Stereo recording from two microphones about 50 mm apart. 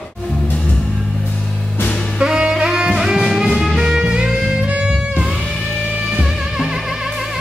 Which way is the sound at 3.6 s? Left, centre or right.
Centre.